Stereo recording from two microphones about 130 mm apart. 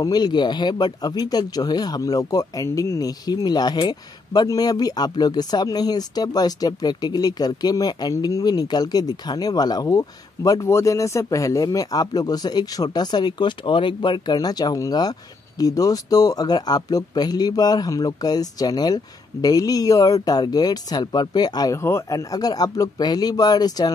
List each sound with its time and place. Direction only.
0.0 s speech: 30° left (ahead or behind)